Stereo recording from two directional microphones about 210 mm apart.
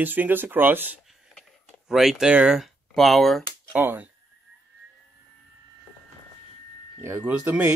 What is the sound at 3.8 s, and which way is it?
Speech, 10° right (ahead or behind).